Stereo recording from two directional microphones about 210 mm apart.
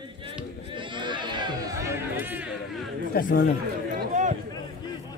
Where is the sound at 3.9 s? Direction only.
35° right (ahead or behind).